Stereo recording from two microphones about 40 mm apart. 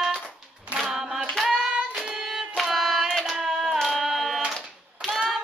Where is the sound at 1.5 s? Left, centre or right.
Centre.